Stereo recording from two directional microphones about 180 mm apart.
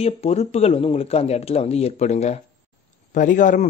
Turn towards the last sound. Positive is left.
turn(degrees=45)  # may be behind; listen again after turning